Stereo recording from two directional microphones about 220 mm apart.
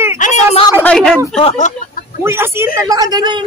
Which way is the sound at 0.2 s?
35° left (ahead or behind).